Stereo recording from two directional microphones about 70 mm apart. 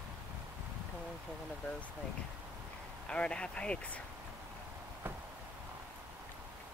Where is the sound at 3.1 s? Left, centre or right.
Centre.